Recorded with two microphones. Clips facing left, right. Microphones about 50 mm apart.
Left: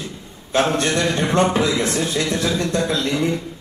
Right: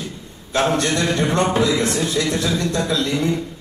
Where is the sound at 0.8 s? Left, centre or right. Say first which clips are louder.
Even; left.